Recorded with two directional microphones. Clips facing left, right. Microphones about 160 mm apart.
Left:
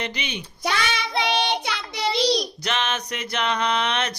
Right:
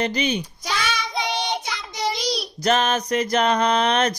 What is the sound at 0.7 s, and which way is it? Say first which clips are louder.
Child singing: left 3 dB; 60° left (ahead or behind).